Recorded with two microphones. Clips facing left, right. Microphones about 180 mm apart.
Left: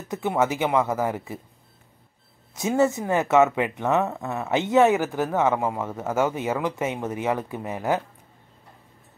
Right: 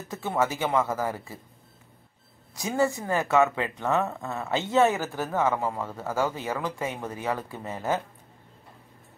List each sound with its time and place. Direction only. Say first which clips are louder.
0.1 s speech: left 4 dB; 15° left (ahead or behind)
2.5 s speech: left 4 dB; 20° left (ahead or behind)